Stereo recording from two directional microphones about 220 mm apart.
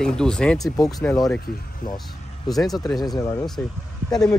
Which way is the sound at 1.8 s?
40° left (ahead or behind).